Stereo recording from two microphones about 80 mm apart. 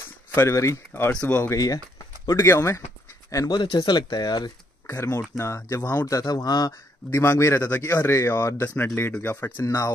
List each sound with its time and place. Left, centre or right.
0.3 s a man's voice: left
1.1 s speech: centre
1.5 s a man's voice: left
3.5 s speech: left
4.8 s a man's voice: left
5.8 s speech: left
6.0 s a man's voice: left
7.1 s a man's voice: left